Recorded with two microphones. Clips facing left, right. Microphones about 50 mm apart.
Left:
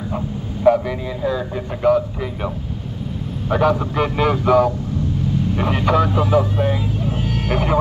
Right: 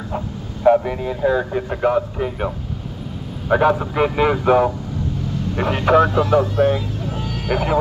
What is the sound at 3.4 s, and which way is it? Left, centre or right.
A man's voice, centre.